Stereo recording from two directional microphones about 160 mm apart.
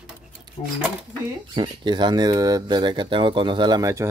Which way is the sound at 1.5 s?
30° right (ahead or behind).